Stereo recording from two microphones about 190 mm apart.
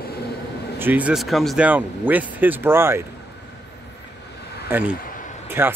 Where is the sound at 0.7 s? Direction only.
10° right (ahead or behind).